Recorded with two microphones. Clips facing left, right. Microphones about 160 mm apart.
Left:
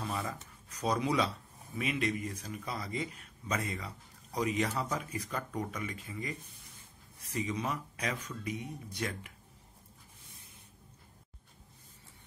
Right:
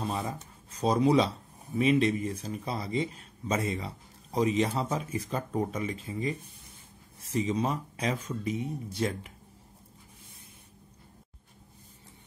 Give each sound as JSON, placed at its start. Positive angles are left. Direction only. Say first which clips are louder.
{"t": 0.0, "sound": "speech", "louder": "right 4 dB", "side_deg": -25}